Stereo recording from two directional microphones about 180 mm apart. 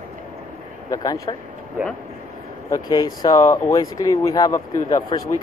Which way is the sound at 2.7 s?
20° left (ahead or behind).